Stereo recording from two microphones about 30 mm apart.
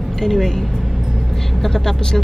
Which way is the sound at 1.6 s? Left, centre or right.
Centre.